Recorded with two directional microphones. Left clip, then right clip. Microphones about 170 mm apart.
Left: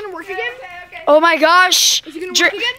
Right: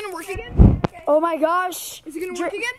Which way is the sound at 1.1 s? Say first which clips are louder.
Left 8 dB; 5° left (ahead or behind).